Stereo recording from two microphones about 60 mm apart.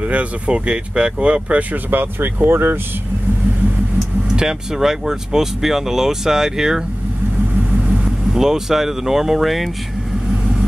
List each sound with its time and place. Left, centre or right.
0.0 s speech: right
4.4 s speech: centre